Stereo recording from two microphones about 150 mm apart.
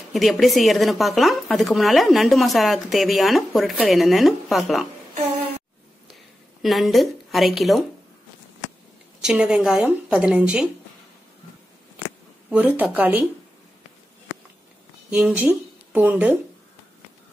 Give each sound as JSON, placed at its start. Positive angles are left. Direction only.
{"t": 0.1, "sound": "speech", "side_deg": 0}
{"t": 6.6, "sound": "speech", "side_deg": 0}
{"t": 9.2, "sound": "speech", "side_deg": -5}
{"t": 12.4, "sound": "speech", "side_deg": -10}
{"t": 15.0, "sound": "speech", "side_deg": -5}